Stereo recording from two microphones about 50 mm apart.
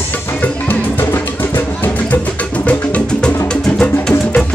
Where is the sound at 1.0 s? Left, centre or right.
Left.